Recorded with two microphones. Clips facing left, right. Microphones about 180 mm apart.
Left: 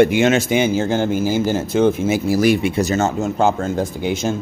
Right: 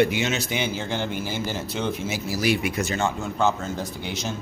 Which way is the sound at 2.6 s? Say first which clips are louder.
Left 7 dB; 30° left (ahead or behind).